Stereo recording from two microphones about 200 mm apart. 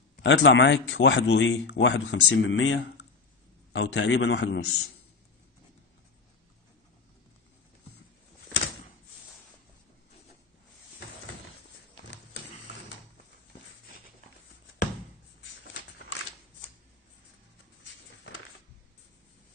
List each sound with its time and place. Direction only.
0.1 s speech: 60° left (ahead or behind)
3.7 s speech: 65° left (ahead or behind)